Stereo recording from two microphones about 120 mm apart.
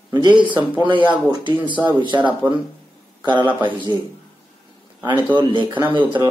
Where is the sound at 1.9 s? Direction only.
40° right (ahead or behind).